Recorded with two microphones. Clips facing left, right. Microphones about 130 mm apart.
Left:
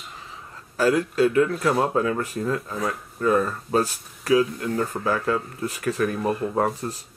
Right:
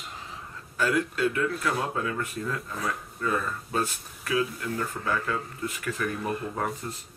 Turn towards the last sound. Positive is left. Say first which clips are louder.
# left 7 dB
turn(degrees=40)  # may be behind; listen again after turning